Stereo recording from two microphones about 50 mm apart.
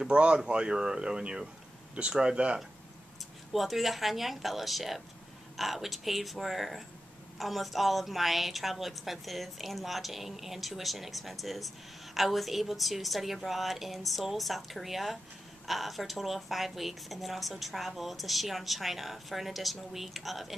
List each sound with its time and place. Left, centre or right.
0.0 s speech: right
3.5 s a woman's voice: centre